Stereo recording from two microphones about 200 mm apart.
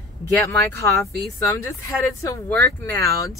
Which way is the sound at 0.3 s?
15° left (ahead or behind).